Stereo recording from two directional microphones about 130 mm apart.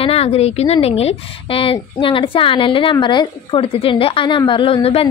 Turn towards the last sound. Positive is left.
turn(degrees=50)  # may be behind; listen again after turning